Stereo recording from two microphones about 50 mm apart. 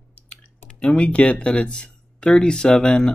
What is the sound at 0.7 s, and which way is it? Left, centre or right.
Speech, left.